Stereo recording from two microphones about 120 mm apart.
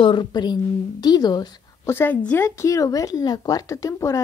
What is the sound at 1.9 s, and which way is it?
Speech, 15° left (ahead or behind).